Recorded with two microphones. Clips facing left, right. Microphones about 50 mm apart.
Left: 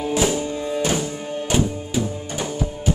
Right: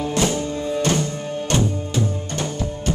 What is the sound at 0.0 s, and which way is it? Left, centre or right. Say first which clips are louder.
Music: left 1 dB; centre.